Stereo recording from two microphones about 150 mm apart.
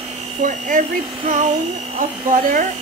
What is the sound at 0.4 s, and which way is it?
Speech, 60° right (ahead or behind).